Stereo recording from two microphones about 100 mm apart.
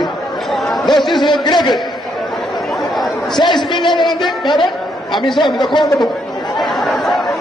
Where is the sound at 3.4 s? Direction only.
50° left (ahead or behind).